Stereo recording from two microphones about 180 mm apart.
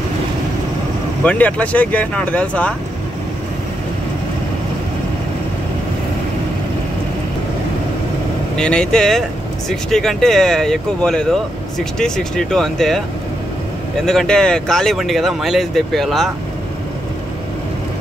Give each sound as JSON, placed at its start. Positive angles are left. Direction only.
{"t": 1.2, "sound": "speech", "side_deg": 10}
{"t": 8.5, "sound": "speech", "side_deg": 5}
{"t": 14.0, "sound": "speech", "side_deg": 5}